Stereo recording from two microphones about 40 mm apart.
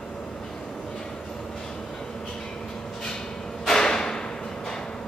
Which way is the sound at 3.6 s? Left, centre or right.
Centre.